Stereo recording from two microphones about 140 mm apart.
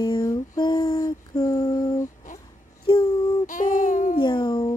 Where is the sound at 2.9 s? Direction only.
35° left (ahead or behind).